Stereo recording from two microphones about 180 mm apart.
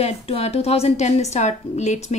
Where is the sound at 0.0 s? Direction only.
35° left (ahead or behind).